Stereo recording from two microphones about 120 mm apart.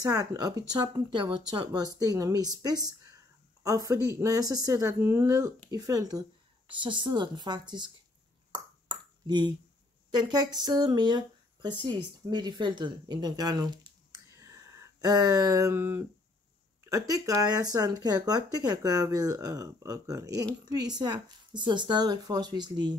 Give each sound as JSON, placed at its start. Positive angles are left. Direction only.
{"t": 0.0, "sound": "a woman's voice", "side_deg": -30}
{"t": 10.1, "sound": "speech", "side_deg": -35}